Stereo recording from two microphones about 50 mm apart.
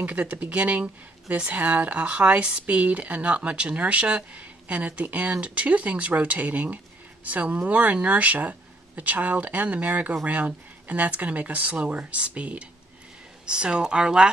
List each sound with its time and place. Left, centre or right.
0.0 s speech: right